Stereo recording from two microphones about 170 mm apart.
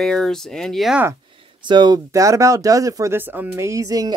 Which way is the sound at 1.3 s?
25° right (ahead or behind).